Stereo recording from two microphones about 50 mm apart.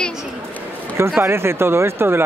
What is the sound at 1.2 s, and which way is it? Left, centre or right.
Speech, right.